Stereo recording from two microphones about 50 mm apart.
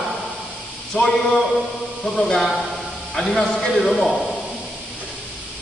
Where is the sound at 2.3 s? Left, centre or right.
Centre.